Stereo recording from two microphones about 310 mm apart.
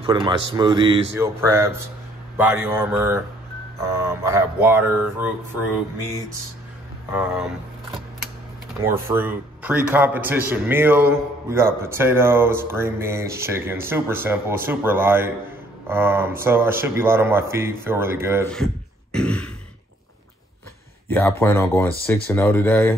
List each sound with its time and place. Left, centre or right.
0.0 s a man's voice: centre
7.1 s speech: centre
8.8 s a man's voice: centre
19.1 s speech: centre
21.1 s speech: centre